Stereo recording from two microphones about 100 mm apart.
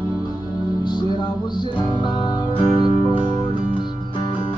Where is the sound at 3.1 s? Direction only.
55° left (ahead or behind).